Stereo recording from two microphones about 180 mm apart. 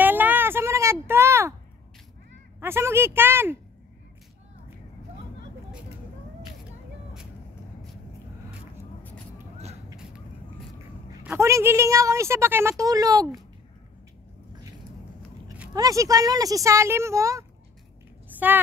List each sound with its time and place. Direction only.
0.0 s a sound: 10° right (ahead or behind)
2.6 s speech: 15° right (ahead or behind)
11.2 s a woman's voice: 15° right (ahead or behind)
15.7 s speech: 20° right (ahead or behind)